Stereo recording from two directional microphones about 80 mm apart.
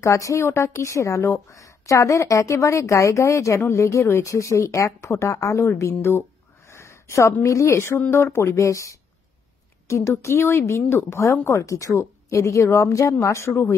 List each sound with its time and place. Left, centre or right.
0.0 s a woman's voice: left
6.7 s a sound: left
7.4 s a woman's voice: left